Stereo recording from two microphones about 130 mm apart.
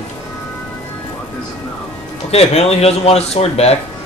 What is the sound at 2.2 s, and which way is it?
Speech, 50° left (ahead or behind).